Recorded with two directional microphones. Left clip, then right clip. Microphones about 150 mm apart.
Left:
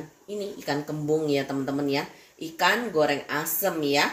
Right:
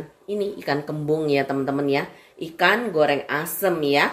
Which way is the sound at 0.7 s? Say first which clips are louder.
Right 1 dB; 65° right (ahead or behind).